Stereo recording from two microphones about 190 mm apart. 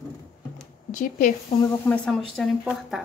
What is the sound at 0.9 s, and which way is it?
Speech, 40° left (ahead or behind).